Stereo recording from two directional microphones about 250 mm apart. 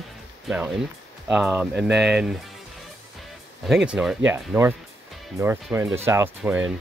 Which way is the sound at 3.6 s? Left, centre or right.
Centre.